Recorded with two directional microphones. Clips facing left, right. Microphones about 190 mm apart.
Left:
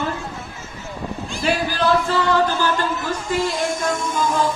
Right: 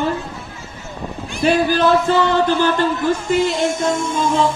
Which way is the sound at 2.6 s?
25° right (ahead or behind).